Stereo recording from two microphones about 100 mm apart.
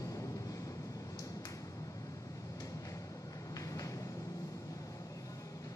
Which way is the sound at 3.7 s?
35° left (ahead or behind).